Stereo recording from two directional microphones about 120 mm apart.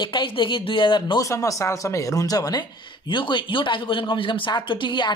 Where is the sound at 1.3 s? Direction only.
25° left (ahead or behind).